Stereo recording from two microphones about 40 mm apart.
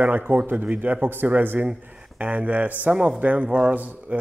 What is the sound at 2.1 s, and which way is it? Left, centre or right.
Speech, right.